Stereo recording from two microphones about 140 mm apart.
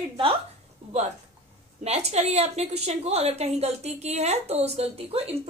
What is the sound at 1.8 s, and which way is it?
A woman's voice, 50° right (ahead or behind).